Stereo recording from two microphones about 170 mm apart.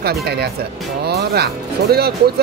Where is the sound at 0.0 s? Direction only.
70° right (ahead or behind).